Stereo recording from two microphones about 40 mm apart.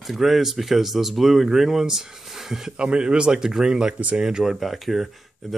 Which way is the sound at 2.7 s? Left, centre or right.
Right.